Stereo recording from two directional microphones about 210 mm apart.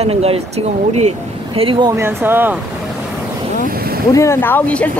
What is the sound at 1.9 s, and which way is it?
Speech, 10° right (ahead or behind).